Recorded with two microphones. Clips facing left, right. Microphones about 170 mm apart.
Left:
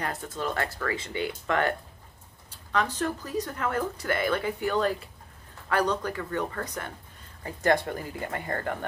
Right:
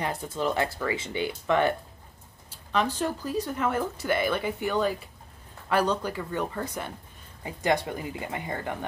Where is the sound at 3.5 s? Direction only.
10° right (ahead or behind).